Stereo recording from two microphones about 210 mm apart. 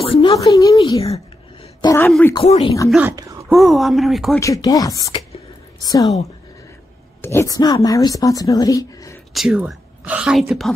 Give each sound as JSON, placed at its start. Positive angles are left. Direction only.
{"t": 0.0, "sound": "a sound", "side_deg": 25}
{"t": 0.7, "sound": "speech", "side_deg": 25}
{"t": 1.8, "sound": "speech", "side_deg": 15}
{"t": 2.3, "sound": "speech", "side_deg": 30}
{"t": 2.9, "sound": "speech", "side_deg": -10}
{"t": 4.4, "sound": "speech", "side_deg": 15}
{"t": 7.2, "sound": "a woman's voice", "side_deg": 15}
{"t": 9.3, "sound": "a woman's voice", "side_deg": -5}